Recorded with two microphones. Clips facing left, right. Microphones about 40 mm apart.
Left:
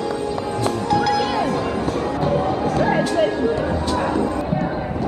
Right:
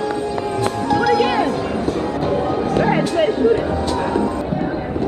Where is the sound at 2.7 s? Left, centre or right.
Right.